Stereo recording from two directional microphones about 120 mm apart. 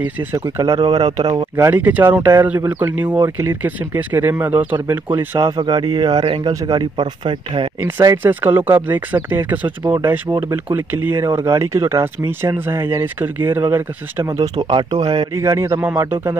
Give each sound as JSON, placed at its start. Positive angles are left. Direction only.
{"t": 0.0, "sound": "speech", "side_deg": -20}
{"t": 0.7, "sound": "speech", "side_deg": -40}
{"t": 1.7, "sound": "speech", "side_deg": -15}
{"t": 5.6, "sound": "speech", "side_deg": -35}
{"t": 8.2, "sound": "speech", "side_deg": -15}
{"t": 14.6, "sound": "speech", "side_deg": -40}
{"t": 15.3, "sound": "speech", "side_deg": -25}